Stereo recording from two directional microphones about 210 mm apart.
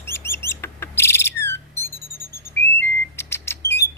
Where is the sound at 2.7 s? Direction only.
10° left (ahead or behind).